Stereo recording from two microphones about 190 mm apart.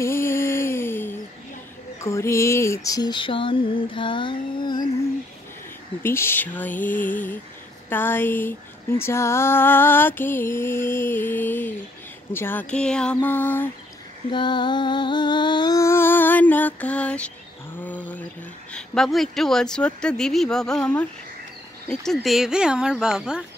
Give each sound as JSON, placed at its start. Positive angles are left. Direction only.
{"t": 0.0, "sound": "a sound", "side_deg": 10}
{"t": 2.0, "sound": "mantra", "side_deg": 15}
{"t": 6.0, "sound": "female singing", "side_deg": 10}
{"t": 14.3, "sound": "music", "side_deg": 25}
{"t": 17.7, "sound": "a sound", "side_deg": 10}
{"t": 18.7, "sound": "speech", "side_deg": 0}